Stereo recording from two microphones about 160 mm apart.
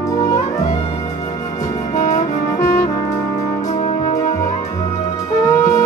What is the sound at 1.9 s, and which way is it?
Brass instrument, 50° left (ahead or behind).